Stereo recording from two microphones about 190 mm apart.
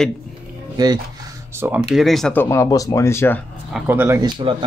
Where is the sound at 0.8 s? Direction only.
20° right (ahead or behind).